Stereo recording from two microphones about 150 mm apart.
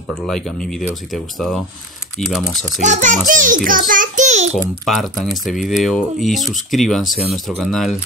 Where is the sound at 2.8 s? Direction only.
55° right (ahead or behind).